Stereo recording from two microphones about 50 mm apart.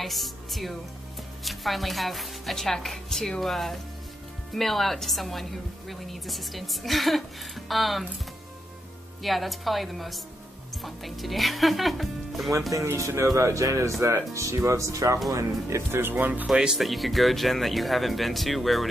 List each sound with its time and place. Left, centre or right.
0.0 s a woman's voice: centre
9.2 s a woman's voice: centre
12.7 s speech: right
14.3 s speech: right
16.0 s speech: right
16.4 s speech: centre
16.7 s a woman's voice: centre